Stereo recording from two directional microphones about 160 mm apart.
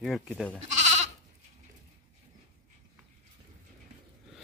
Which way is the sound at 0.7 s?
45° right (ahead or behind).